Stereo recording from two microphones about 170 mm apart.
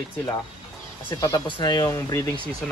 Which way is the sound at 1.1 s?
25° left (ahead or behind).